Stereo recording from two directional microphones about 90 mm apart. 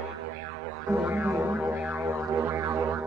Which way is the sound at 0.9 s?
20° right (ahead or behind).